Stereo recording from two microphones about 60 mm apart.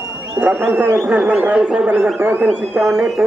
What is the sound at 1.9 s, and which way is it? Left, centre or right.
Speech, right.